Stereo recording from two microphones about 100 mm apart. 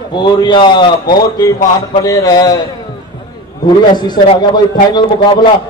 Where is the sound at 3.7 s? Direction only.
45° left (ahead or behind).